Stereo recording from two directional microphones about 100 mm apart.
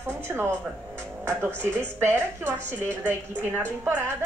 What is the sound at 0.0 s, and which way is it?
Music, 25° right (ahead or behind).